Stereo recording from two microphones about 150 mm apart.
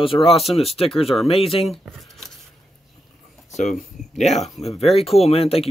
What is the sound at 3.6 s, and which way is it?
Speech, 55° left (ahead or behind).